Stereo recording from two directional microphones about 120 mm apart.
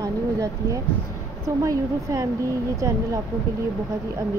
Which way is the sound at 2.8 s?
25° right (ahead or behind).